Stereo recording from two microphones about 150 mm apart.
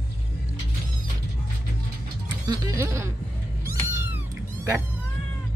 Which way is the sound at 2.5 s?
25° right (ahead or behind).